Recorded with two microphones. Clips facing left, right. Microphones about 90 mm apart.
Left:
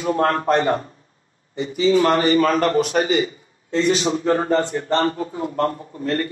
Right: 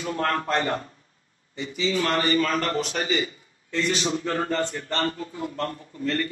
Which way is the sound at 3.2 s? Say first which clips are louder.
Left 5 dB; 25° left (ahead or behind).